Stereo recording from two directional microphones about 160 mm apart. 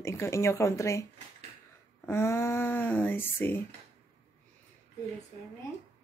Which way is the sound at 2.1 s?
15° left (ahead or behind).